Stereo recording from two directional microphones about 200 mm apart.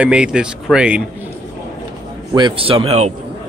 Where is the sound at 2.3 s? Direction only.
25° right (ahead or behind).